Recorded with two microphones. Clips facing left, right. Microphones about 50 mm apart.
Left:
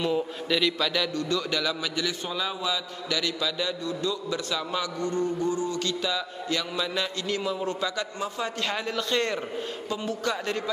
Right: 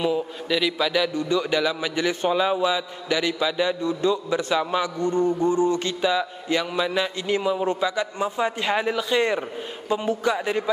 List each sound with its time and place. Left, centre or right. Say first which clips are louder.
0.1 s a man's voice: right 2 dB; centre